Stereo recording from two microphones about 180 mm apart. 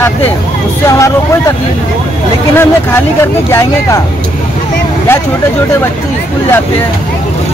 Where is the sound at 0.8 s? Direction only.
15° left (ahead or behind).